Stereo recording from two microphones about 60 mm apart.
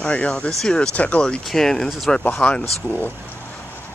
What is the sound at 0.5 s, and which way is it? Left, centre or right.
Speech, centre.